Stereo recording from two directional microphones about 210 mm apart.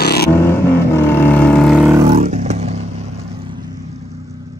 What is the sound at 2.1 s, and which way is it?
Vehicle, 30° right (ahead or behind).